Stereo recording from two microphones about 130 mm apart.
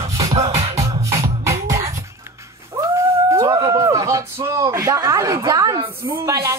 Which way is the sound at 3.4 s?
25° right (ahead or behind).